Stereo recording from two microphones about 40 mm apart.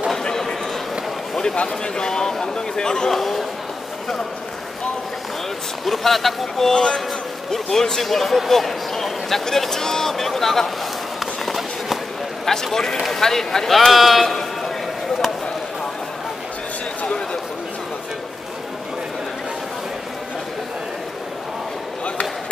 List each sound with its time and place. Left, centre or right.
0.2 s a sound: centre
1.6 s a man's voice: centre
3.1 s a man's voice: centre
5.9 s a man's voice: centre
11.4 s run: centre
12.4 s a man's voice: centre
17.0 s a sound: left